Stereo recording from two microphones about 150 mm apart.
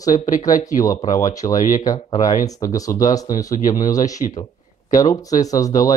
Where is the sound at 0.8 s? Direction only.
25° left (ahead or behind).